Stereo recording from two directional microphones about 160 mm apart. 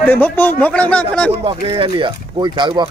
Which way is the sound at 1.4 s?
35° right (ahead or behind).